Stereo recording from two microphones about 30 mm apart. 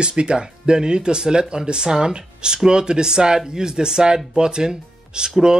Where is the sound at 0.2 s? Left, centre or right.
Right.